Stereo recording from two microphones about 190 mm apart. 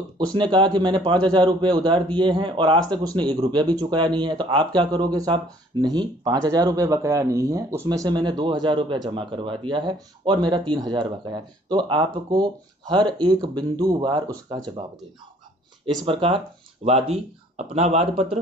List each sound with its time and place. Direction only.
0.3 s a man's voice: 25° right (ahead or behind)
15.8 s a man's voice: 25° right (ahead or behind)